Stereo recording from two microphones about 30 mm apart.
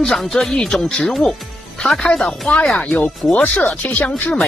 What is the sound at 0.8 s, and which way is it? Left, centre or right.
Speech, left.